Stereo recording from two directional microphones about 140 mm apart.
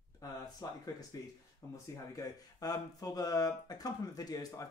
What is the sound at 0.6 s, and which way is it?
Speech, 30° left (ahead or behind).